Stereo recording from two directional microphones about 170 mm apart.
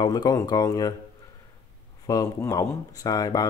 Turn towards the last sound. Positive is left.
turn(degrees=20)  # may be behind; listen again after turning